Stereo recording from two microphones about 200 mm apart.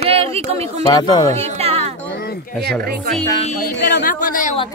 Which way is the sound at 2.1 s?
50° left (ahead or behind).